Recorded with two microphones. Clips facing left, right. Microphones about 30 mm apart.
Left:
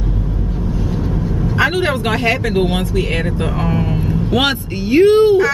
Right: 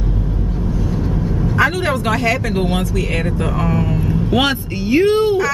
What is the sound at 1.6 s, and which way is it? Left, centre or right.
Speech, left.